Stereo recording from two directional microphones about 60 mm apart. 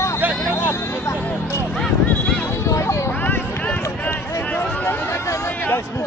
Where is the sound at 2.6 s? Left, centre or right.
Left.